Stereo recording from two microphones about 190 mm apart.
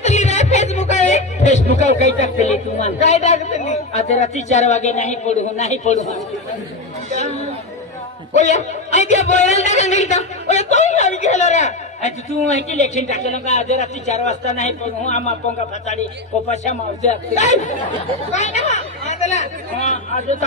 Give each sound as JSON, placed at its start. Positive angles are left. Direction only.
{"t": 0.0, "sound": "speech", "side_deg": 35}
{"t": 8.4, "sound": "a man's voice", "side_deg": 40}